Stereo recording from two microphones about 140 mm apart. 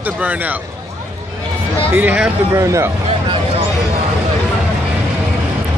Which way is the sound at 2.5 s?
20° right (ahead or behind).